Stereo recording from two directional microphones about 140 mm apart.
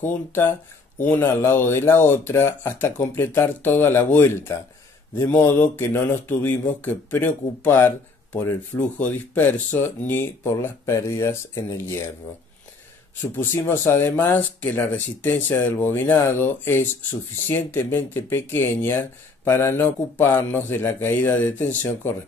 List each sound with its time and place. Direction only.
0.0 s speech: 15° left (ahead or behind)
13.4 s speech: 15° left (ahead or behind)